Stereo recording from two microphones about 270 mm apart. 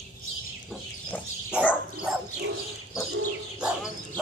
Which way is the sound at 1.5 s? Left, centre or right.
Centre.